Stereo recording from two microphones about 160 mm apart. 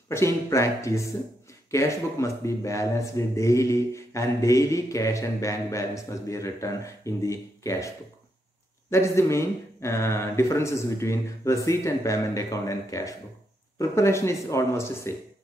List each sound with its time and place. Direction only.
0.1 s a man's voice: 15° left (ahead or behind)
8.9 s speech: 15° left (ahead or behind)